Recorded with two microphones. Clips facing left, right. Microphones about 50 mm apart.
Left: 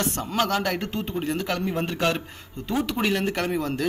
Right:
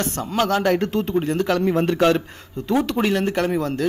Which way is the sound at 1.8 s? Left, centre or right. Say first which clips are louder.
Right 7 dB; right.